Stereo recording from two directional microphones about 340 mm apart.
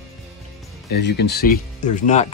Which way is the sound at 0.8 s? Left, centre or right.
Left.